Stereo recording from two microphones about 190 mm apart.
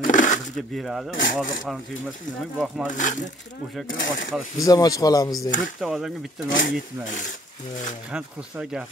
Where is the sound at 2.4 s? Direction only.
Centre (ahead or behind).